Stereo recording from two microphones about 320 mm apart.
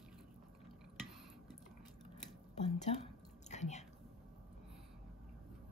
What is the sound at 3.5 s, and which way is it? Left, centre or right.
Whispering, left.